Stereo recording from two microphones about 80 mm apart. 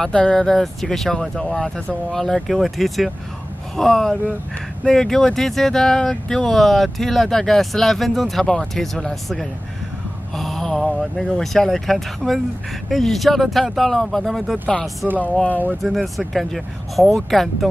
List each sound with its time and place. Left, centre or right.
0.0 s speech: centre
10.3 s a sound: centre
11.0 s speech: centre